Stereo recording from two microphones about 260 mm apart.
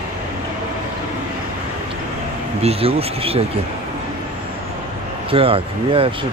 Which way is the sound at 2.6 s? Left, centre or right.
Right.